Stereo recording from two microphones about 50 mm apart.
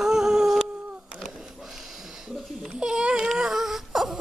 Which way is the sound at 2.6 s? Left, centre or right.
Centre.